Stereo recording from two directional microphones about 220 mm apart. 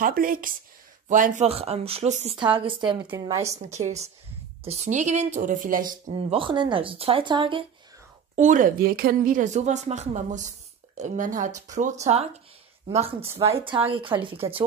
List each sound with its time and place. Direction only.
0.0 s a woman's voice: 40° right (ahead or behind); by 3.5 s 15° right (ahead or behind)
3.7 s a woman's voice: 30° right (ahead or behind)
8.4 s speech: 35° right (ahead or behind)
13.6 s a woman's voice: 25° right (ahead or behind)